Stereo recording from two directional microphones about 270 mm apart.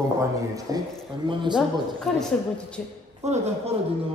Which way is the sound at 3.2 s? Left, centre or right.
Right.